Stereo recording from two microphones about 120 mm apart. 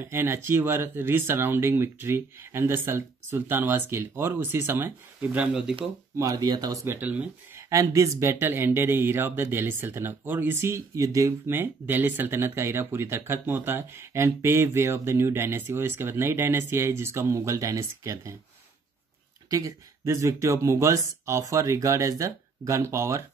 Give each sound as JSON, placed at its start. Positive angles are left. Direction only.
{"t": 0.0, "sound": "speech", "side_deg": -20}
{"t": 6.1, "sound": "speech", "side_deg": -30}
{"t": 7.0, "sound": "speech", "side_deg": -15}
{"t": 7.7, "sound": "speech", "side_deg": -25}
{"t": 19.5, "sound": "speech", "side_deg": -30}